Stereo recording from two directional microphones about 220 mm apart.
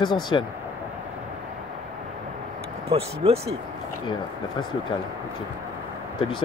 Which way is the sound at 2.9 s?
25° right (ahead or behind).